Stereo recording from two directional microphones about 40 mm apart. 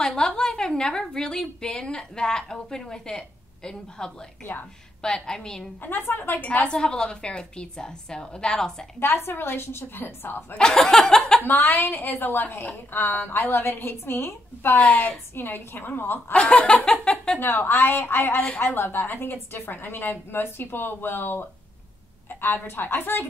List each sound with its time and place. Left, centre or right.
0.0 s a woman's voice: centre
5.8 s a woman's voice: left
6.7 s a woman's voice: left
9.0 s a woman's voice: left
10.7 s a woman's voice: centre
11.4 s a woman's voice: left
13.4 s a woman's voice: left
15.3 s a woman's voice: left
16.5 s a woman's voice: left
17.4 s a woman's voice: left
18.8 s a woman's voice: left